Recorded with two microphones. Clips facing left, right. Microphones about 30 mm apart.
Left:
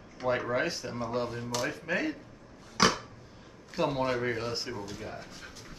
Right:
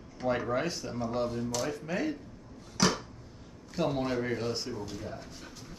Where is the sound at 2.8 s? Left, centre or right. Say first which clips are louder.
Left 2 dB; centre.